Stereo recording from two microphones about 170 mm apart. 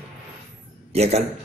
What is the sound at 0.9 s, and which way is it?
Speech, 40° right (ahead or behind).